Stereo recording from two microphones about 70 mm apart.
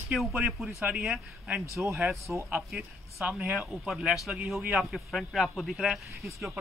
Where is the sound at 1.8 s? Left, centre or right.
Right; by 6.5 s centre.